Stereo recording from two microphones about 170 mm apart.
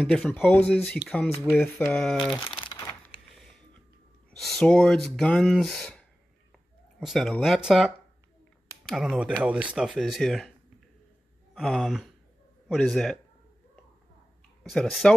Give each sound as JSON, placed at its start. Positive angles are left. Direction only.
{"t": 0.0, "sound": "speech", "side_deg": 5}
{"t": 2.4, "sound": "crumpling", "side_deg": 30}
{"t": 4.3, "sound": "speech", "side_deg": 5}
{"t": 11.5, "sound": "speech", "side_deg": 0}
{"t": 14.6, "sound": "speech", "side_deg": 0}